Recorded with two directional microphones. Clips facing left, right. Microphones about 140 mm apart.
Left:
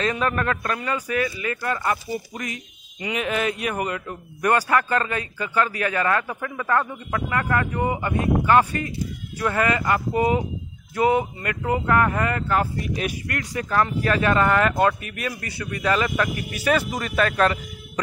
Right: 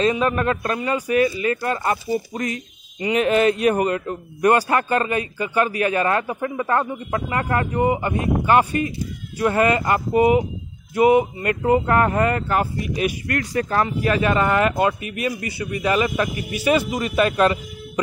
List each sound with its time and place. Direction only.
0.0 s a man's voice: 15° right (ahead or behind)
11.0 s a man's voice: 15° right (ahead or behind); by 13.8 s 30° right (ahead or behind)
13.8 s a man's voice: 10° right (ahead or behind)